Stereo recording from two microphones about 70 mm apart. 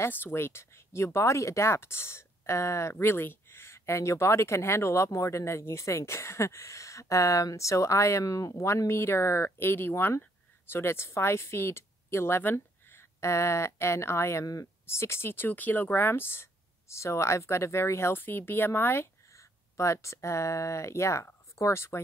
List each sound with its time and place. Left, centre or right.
0.0 s a woman's voice: left
14.4 s speech: left
14.9 s speech: left
19.3 s speech: left